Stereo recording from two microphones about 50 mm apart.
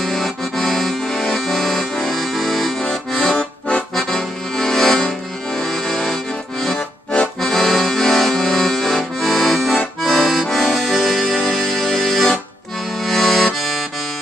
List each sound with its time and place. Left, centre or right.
0.0 s accordion: centre
3.3 s accordion: left
3.9 s accordion: centre
7.3 s accordion: centre
10.6 s music: centre